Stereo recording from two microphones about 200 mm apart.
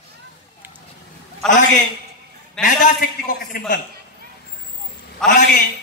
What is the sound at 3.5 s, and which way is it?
Speech, 45° left (ahead or behind).